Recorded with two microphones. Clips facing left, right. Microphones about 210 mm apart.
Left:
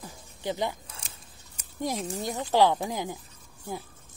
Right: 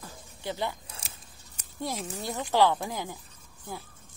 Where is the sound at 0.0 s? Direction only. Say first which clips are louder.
Left 3 dB; 15° left (ahead or behind).